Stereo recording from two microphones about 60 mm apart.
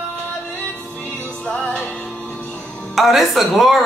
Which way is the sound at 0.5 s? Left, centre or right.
Left.